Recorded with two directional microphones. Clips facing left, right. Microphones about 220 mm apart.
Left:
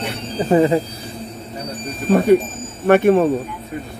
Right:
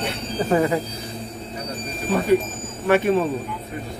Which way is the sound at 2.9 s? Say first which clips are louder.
Left 6 dB; 60° left (ahead or behind).